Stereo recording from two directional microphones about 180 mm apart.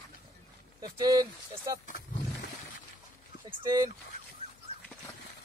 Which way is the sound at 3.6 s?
20° right (ahead or behind).